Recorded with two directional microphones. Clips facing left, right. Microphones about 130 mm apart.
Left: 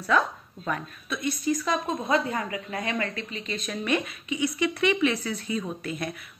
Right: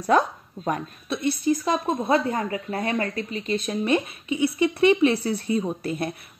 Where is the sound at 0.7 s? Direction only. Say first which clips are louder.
Right 4 dB; 35° right (ahead or behind).